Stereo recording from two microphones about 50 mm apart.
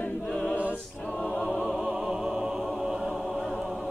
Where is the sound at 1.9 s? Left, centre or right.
Centre.